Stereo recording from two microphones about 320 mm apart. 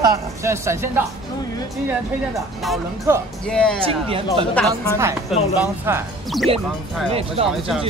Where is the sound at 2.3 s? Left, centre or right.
Centre.